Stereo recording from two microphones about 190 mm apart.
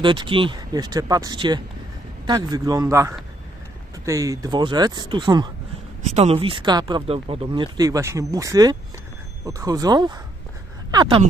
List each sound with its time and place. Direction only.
0.0 s speech: 25° right (ahead or behind)
6.0 s speech: 35° right (ahead or behind)